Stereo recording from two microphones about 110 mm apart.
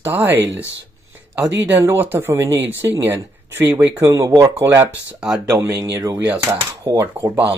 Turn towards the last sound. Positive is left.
turn(degrees=-20)  # may be behind; listen again after turning